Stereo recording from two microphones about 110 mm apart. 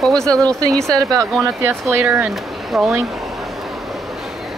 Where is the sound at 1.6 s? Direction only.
20° right (ahead or behind).